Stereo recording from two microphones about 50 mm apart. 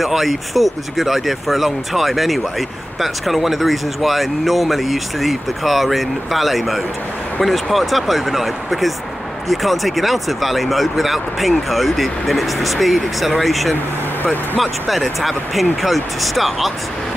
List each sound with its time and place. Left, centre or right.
0.0 s speech: centre
14.2 s speech: left
14.6 s speech: centre